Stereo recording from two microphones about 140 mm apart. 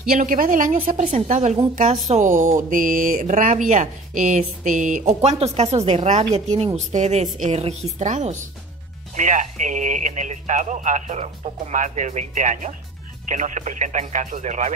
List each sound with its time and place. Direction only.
0.1 s speech: 80° right
1.1 s speech: 50° right (ahead or behind); by 5.1 s 65° right (ahead or behind)
5.2 s speech: 45° right (ahead or behind)